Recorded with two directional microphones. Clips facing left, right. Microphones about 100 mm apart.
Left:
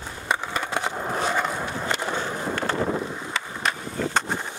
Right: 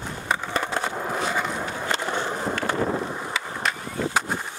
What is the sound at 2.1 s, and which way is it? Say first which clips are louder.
Skateboard: right 1 dB; 15° right (ahead or behind).